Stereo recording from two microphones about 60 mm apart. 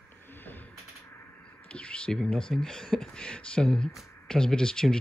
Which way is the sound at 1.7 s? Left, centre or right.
Centre.